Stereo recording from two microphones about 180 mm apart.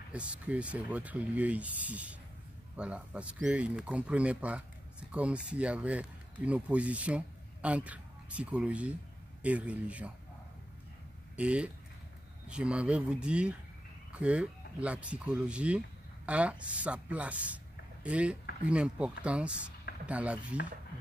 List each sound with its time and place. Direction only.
0.1 s speech: 5° right (ahead or behind)
11.3 s speech: 5° right (ahead or behind)